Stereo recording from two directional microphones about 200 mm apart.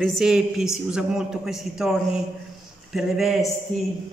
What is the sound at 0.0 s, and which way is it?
A man's voice, centre (ahead or behind).